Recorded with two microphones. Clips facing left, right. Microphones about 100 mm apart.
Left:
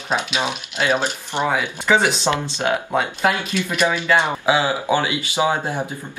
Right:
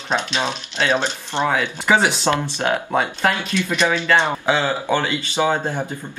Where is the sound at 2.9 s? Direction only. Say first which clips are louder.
Even; 10° left (ahead or behind).